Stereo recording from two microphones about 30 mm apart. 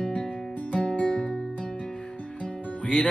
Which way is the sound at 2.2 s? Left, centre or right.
Left.